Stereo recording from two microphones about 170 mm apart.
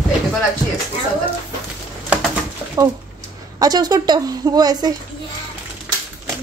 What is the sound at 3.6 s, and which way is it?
A woman's voice, 25° right (ahead or behind).